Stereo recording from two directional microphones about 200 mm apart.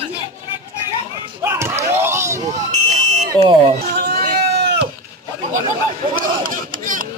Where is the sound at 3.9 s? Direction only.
55° right (ahead or behind).